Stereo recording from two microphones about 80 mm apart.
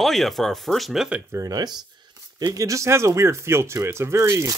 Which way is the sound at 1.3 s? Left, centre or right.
Right.